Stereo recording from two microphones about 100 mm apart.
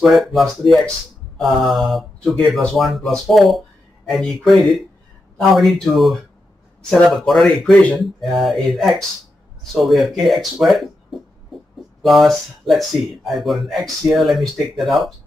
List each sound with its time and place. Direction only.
0.0 s speech: centre (ahead or behind)
12.0 s speech: centre (ahead or behind)